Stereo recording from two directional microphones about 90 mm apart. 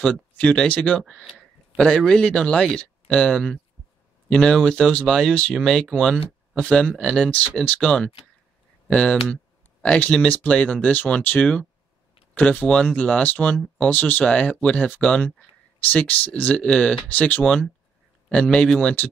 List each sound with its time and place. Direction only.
0.0 s speech: 10° left (ahead or behind)
1.8 s speech: 10° left (ahead or behind)